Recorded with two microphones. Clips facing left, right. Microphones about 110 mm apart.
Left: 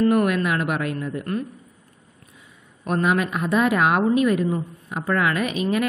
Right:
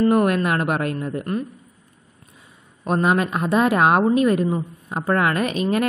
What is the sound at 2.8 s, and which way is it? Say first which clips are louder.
A woman's voice: right 2 dB; 30° right (ahead or behind).